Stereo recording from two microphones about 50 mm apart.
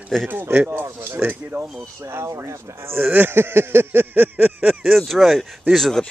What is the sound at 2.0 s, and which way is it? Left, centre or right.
Speech, right.